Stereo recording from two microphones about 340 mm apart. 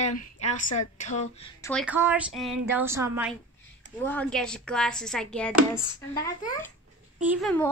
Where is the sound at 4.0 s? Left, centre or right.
Centre.